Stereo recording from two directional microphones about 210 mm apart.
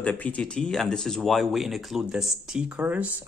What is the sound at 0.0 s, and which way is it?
Speech, 5° left (ahead or behind).